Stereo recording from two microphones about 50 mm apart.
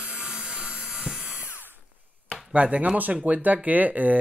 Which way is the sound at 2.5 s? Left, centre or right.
Right.